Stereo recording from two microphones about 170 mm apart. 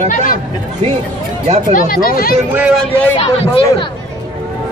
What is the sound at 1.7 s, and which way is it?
Speech, 55° left (ahead or behind).